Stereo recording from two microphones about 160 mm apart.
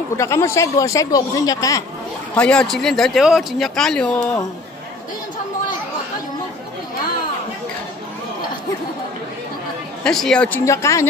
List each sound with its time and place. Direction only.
0.2 s speech: 20° left (ahead or behind)
2.3 s speech: 5° left (ahead or behind)
10.0 s speech: 5° left (ahead or behind)
10.6 s speech: 20° left (ahead or behind)